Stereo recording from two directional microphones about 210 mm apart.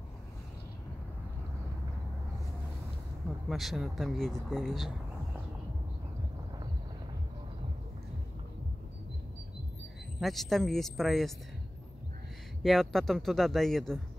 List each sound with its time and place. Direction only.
3.4 s speech: centre (ahead or behind)
10.2 s speech: centre (ahead or behind)
12.6 s speech: centre (ahead or behind)